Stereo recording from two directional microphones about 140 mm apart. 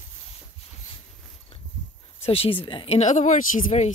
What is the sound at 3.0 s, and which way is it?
Speech, 60° left (ahead or behind).